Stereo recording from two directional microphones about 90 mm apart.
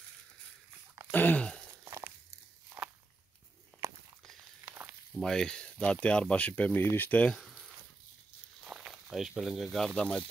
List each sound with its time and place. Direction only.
1.1 s a sound: 15° left (ahead or behind)
1.9 s crunch: 35° right (ahead or behind)
3.8 s walk: 35° right (ahead or behind)
4.6 s frying: 20° right (ahead or behind)
5.1 s speech: 5° left (ahead or behind)
8.6 s walk: 5° right (ahead or behind)
9.1 s speech: 5° right (ahead or behind)
9.9 s speech: 10° left (ahead or behind)